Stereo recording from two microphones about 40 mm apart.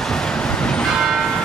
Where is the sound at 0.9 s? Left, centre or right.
Centre.